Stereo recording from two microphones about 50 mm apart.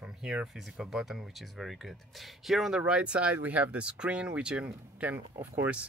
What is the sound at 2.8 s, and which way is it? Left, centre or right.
Speech, right.